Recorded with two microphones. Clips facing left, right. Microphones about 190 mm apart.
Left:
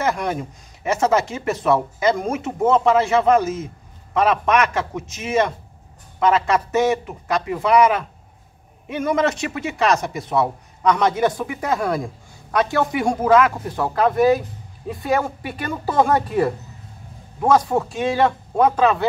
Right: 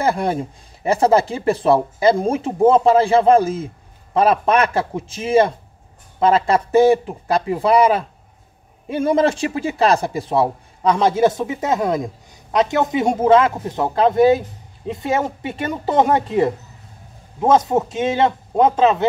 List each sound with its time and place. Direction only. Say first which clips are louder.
0.0 s a man's voice: right 3 dB; 30° right (ahead or behind)